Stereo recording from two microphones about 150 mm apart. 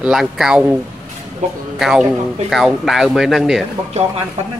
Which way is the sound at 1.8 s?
Centre (ahead or behind).